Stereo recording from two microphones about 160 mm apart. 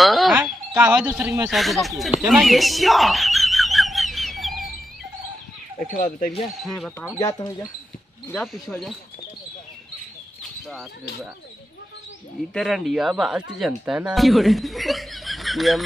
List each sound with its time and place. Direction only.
0.0 s a sound: centre (ahead or behind)
1.5 s speech: centre (ahead or behind)
2.1 s a sound: centre (ahead or behind)
5.9 s speech: 55° left (ahead or behind)
6.5 s speech: centre (ahead or behind)
7.2 s speech: 20° left (ahead or behind)
8.3 s speech: centre (ahead or behind)
12.5 s speech: centre (ahead or behind)